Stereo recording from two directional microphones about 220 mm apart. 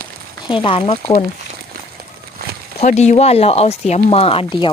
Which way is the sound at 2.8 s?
30° left (ahead or behind).